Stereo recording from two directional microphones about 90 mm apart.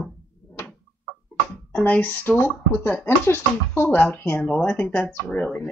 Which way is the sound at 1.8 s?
20° left (ahead or behind).